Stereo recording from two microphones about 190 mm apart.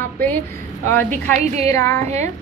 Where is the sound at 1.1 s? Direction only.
40° right (ahead or behind).